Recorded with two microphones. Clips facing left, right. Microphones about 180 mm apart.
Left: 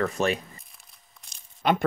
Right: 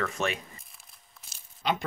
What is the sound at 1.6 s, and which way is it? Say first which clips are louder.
Speech: left 6 dB; 55° left (ahead or behind).